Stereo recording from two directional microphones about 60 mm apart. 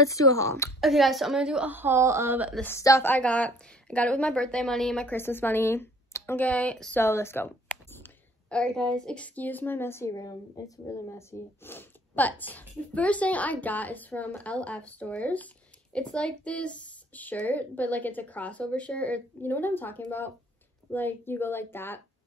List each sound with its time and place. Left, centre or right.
0.0 s a woman's voice: left
0.7 s a woman's voice: centre
1.7 s speech: right
2.0 s speech: right
2.2 s speech: right
3.2 s a woman's voice: left
5.0 s speech: left
6.4 s speech: left
7.0 s a sound: left
8.5 s speech: centre
19.4 s a woman's voice: left